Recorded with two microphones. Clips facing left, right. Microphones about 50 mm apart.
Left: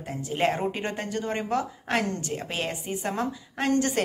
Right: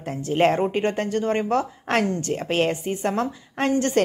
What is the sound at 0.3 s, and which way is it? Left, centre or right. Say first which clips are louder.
A woman's voice: right 6 dB; right.